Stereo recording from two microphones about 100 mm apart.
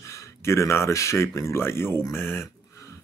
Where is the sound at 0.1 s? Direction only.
30° left (ahead or behind).